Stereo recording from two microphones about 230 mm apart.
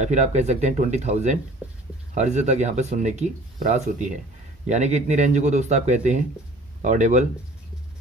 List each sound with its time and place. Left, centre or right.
0.0 s speech: right